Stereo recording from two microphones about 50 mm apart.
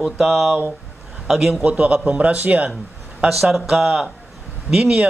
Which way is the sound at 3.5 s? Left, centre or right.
Centre.